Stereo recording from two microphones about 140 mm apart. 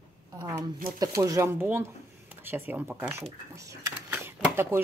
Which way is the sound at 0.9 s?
25° right (ahead or behind).